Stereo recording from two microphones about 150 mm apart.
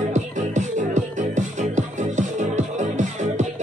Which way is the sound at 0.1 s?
55° right (ahead or behind).